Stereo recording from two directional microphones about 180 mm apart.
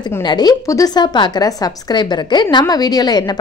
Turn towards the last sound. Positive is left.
turn(degrees=20)  # may be behind; listen again after turning